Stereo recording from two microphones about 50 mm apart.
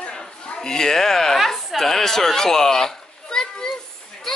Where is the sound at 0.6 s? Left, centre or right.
Centre.